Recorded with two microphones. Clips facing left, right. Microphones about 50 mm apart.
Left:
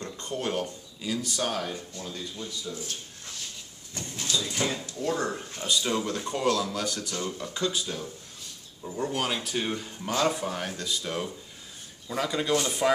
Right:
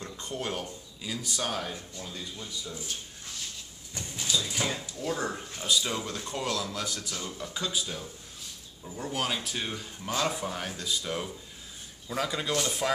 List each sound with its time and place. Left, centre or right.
0.0 s a sound: centre
0.3 s speech: centre
2.7 s speech: centre